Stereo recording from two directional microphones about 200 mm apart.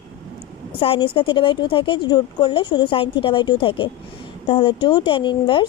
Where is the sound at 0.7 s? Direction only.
25° left (ahead or behind).